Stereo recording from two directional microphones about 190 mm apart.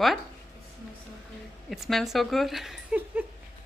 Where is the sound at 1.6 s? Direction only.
Centre (ahead or behind).